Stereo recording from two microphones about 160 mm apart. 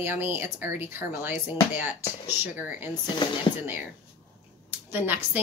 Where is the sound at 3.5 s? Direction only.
30° left (ahead or behind).